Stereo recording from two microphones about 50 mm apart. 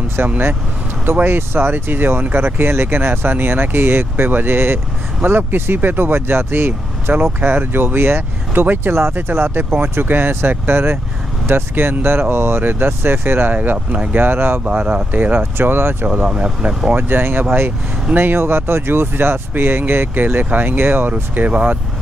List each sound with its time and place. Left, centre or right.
0.2 s speech: right
13.5 s speech: right
14.6 s speech: right
15.5 s speech: right
16.2 s speech: right
16.9 s speech: right
21.1 s speech: right